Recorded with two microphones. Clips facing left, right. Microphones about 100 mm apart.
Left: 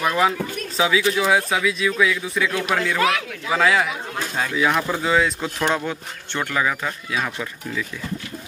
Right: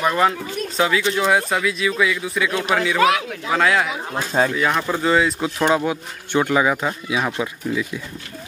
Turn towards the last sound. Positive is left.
turn(degrees=-20)  # may be behind; listen again after turning